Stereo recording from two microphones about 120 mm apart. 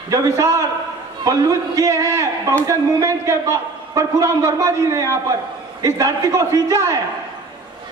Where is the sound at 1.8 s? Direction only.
30° right (ahead or behind).